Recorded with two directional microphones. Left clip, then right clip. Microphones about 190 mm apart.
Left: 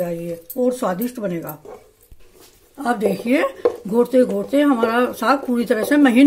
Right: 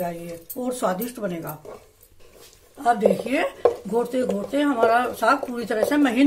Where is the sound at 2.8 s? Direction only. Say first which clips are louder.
Right 1 dB; 40° left (ahead or behind).